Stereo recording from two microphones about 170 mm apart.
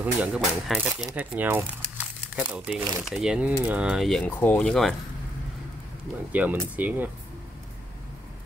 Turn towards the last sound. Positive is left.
turn(degrees=-10)  # may be behind; listen again after turning